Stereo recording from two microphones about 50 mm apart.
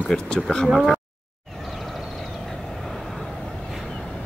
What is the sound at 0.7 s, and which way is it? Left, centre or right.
Speech, centre.